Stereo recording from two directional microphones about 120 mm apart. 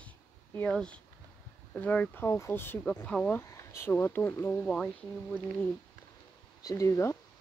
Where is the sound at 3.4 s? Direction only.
25° left (ahead or behind).